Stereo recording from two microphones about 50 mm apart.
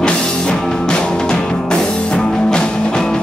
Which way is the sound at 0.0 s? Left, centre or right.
Centre.